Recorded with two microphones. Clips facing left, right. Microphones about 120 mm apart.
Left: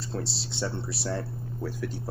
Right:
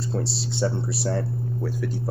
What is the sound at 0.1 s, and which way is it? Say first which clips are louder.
Speech: right 4 dB; 10° right (ahead or behind).